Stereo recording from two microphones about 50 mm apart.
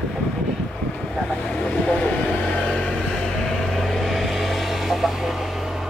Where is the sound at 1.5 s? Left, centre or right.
Left.